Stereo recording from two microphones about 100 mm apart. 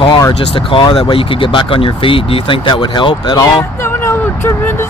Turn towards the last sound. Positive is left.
turn(degrees=25)  # may be behind; listen again after turning